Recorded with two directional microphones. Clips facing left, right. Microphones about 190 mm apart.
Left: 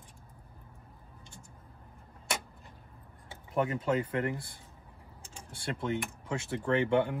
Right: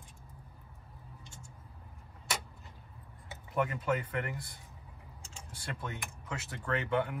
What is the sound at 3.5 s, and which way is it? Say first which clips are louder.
Speech: left 3 dB; 25° left (ahead or behind).